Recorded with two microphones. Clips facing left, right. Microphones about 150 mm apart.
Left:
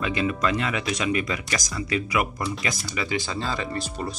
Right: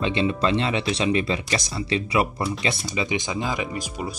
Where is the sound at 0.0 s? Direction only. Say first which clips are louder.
Right 2 dB; 25° right (ahead or behind).